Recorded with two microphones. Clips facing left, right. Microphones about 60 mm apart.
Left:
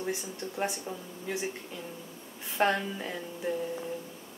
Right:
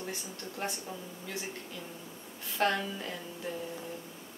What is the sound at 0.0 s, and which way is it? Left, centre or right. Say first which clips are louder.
Speech: left 6 dB; left.